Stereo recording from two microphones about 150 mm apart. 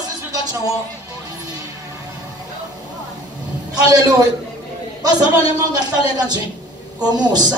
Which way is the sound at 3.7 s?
25° right (ahead or behind).